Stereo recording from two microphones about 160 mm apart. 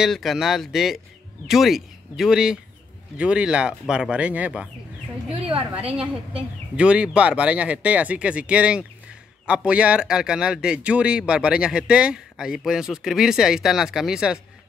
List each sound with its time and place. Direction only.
0.0 s speech: centre (ahead or behind)
5.3 s a woman's voice: 35° right (ahead or behind)
6.8 s speech: 5° right (ahead or behind)